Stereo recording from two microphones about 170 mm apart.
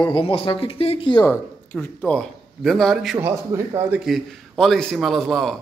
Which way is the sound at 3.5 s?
15° right (ahead or behind).